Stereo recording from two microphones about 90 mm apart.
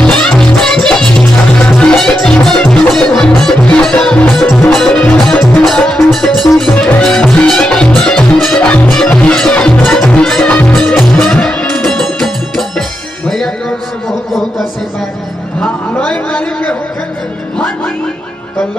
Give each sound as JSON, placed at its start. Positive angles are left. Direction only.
{"t": 0.0, "sound": "music", "side_deg": 10}
{"t": 6.7, "sound": "music", "side_deg": 20}
{"t": 7.0, "sound": "music", "side_deg": 5}
{"t": 10.7, "sound": "music", "side_deg": 0}
{"t": 15.6, "sound": "a sound", "side_deg": 10}